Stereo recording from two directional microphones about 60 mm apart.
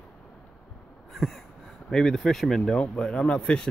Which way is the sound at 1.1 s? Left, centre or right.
Centre.